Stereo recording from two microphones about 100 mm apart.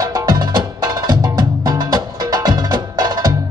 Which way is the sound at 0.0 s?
40° right (ahead or behind).